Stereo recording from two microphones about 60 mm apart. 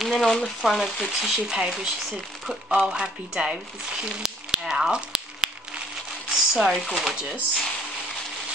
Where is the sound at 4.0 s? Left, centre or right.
Centre.